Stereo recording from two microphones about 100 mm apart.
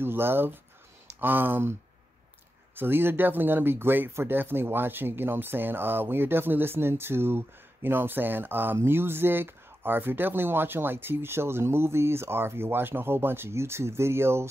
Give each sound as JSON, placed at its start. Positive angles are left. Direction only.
{"t": 0.0, "sound": "speech", "side_deg": -20}